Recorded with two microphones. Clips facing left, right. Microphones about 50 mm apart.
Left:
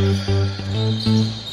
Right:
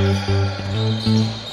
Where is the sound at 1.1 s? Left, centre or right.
Centre.